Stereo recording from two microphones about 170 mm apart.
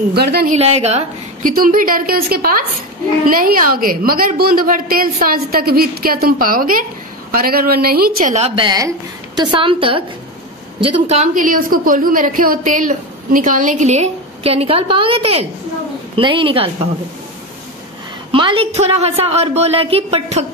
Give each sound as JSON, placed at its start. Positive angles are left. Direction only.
{"t": 0.1, "sound": "a woman's voice", "side_deg": -70}
{"t": 0.5, "sound": "a woman's voice", "side_deg": -40}
{"t": 1.5, "sound": "a woman's voice", "side_deg": -55}
{"t": 8.4, "sound": "a woman's voice", "side_deg": -35}
{"t": 18.3, "sound": "a woman's voice", "side_deg": -30}